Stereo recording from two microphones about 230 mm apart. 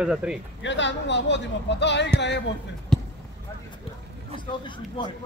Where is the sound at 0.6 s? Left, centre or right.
Left.